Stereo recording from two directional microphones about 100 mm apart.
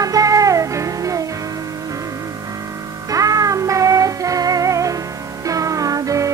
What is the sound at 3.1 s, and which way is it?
Music, 35° right (ahead or behind).